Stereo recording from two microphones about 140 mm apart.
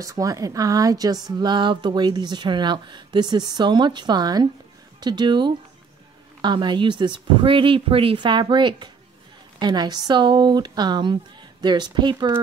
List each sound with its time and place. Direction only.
0.0 s a woman's voice: 25° right (ahead or behind)